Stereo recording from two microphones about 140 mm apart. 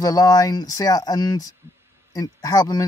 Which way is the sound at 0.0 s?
25° left (ahead or behind).